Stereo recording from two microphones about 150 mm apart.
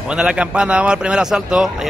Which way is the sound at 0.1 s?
5° right (ahead or behind).